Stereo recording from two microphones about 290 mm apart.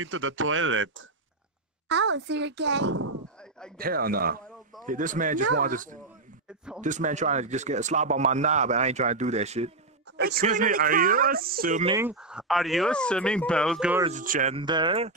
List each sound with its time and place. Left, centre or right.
0.0 s a child's voice: right
11.9 s speech: centre
14.0 s speech: right